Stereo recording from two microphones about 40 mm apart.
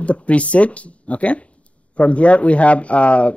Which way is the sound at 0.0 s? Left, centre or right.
Left.